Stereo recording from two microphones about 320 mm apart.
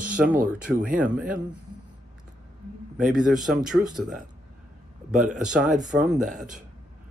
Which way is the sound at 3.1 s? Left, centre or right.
Centre.